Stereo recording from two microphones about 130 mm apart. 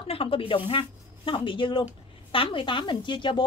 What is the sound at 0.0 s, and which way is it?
A woman's voice, 45° left (ahead or behind).